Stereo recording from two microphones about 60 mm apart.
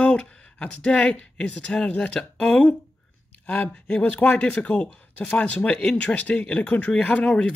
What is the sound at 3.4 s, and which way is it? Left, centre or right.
Speech, left.